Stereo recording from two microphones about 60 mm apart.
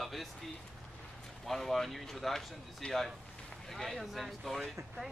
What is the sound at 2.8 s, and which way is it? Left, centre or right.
Speech, centre.